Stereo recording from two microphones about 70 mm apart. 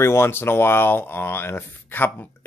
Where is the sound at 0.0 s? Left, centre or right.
Left.